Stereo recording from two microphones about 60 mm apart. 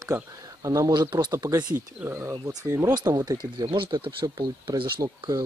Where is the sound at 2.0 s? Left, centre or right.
Right.